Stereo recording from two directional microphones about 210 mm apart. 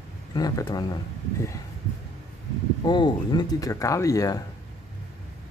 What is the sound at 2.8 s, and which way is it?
Speech, 20° left (ahead or behind).